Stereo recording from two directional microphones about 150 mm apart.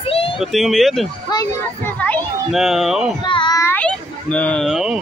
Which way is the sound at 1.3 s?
25° left (ahead or behind).